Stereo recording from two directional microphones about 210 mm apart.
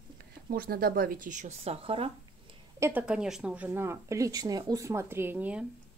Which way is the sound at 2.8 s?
5° right (ahead or behind).